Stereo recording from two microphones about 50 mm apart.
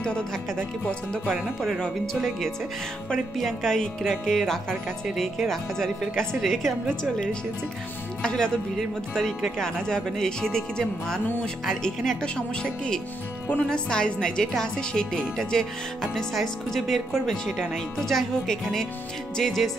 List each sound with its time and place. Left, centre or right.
0.0 s speech: centre
3.1 s speech: centre
8.2 s speech: centre
9.8 s speech: centre
13.5 s speech: centre
14.4 s speech: centre